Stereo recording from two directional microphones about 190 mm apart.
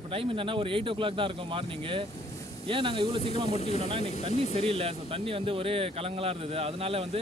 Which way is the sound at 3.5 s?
35° left (ahead or behind).